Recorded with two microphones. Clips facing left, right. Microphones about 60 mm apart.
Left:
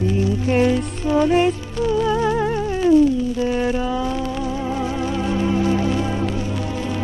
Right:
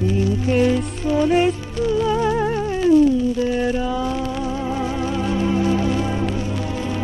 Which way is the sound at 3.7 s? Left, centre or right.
Centre.